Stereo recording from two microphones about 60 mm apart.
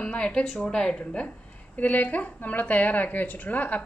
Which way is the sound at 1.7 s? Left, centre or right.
Left.